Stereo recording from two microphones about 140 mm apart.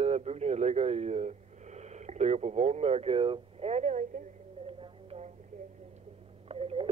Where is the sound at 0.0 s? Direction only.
50° right (ahead or behind).